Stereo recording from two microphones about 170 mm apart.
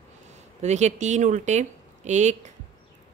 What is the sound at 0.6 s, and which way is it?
A woman's voice, 45° right (ahead or behind).